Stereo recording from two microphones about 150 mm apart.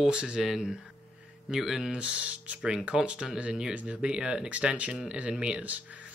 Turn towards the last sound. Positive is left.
turn(degrees=-10)  # may be behind; listen again after turning